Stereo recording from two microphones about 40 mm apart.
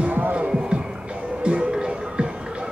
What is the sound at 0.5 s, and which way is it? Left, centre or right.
Music, right.